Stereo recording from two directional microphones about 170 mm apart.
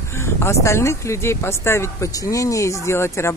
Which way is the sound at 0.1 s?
15° left (ahead or behind).